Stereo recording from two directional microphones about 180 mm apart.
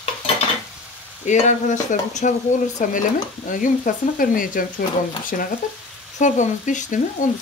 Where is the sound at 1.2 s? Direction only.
40° left (ahead or behind).